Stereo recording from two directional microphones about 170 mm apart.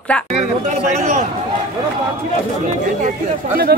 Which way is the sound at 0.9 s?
45° right (ahead or behind).